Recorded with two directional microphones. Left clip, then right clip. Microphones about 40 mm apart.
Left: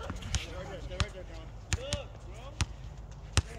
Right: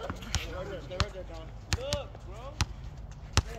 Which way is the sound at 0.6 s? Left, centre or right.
Right.